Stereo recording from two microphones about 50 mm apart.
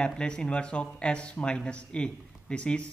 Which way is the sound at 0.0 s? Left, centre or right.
Centre.